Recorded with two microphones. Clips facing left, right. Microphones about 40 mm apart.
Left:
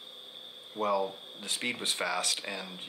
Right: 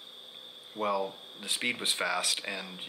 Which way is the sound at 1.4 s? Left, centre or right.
Centre.